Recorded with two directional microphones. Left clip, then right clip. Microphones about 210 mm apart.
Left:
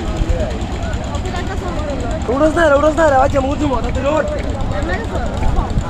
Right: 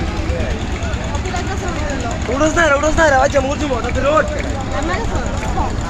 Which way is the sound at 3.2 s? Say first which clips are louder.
Even; 50° left (ahead or behind).